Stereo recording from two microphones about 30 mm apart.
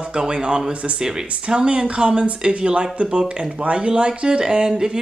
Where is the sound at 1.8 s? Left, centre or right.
Right.